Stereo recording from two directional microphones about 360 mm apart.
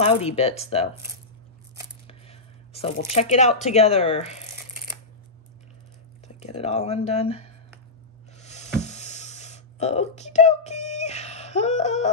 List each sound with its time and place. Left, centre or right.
0.0 s speech: centre
2.0 s speech: centre
6.2 s speech: centre
8.4 s a sound: centre